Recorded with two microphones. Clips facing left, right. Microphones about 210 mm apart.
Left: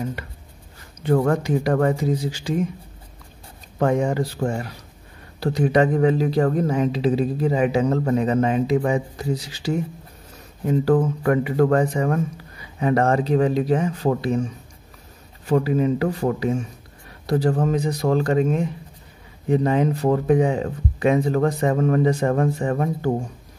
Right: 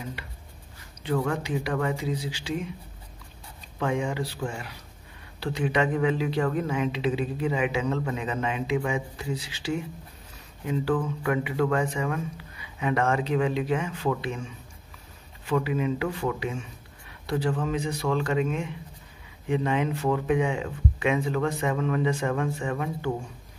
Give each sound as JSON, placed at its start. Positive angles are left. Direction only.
{"t": 0.2, "sound": "a sound", "side_deg": 45}
{"t": 1.0, "sound": "speech", "side_deg": 45}
{"t": 3.7, "sound": "speech", "side_deg": 40}